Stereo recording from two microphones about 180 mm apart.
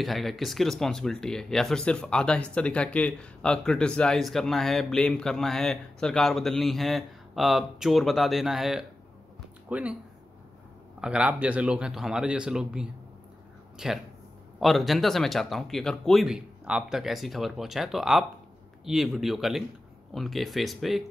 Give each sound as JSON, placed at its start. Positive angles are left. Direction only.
{"t": 0.0, "sound": "speech", "side_deg": 0}
{"t": 11.0, "sound": "speech", "side_deg": -5}